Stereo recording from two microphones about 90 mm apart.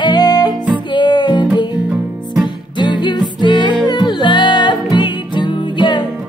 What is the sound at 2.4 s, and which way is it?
Music, 55° left (ahead or behind).